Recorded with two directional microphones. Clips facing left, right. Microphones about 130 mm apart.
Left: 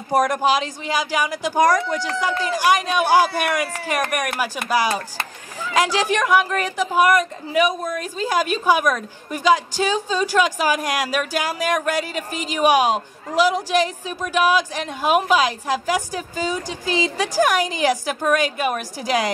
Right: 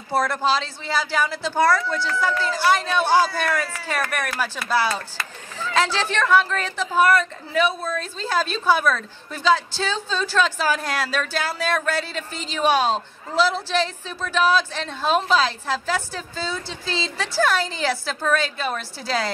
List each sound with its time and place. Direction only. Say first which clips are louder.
0.1 s speech: left 3 dB; 15° left (ahead or behind)